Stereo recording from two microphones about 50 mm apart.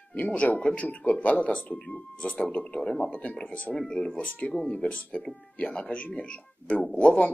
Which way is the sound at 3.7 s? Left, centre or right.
Centre.